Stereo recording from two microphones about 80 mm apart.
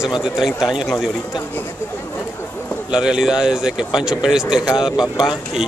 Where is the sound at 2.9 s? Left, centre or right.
Centre.